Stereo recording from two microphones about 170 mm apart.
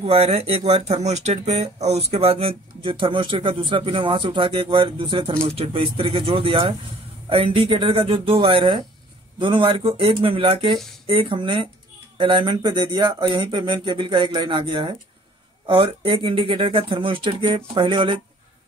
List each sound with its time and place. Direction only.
0.0 s speech: 35° right (ahead or behind)